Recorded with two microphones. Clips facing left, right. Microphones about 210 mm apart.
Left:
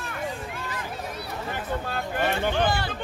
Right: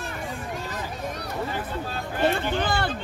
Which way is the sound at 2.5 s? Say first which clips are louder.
Left 1 dB; 55° right (ahead or behind).